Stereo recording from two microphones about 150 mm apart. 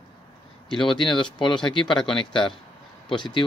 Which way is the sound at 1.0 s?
30° left (ahead or behind).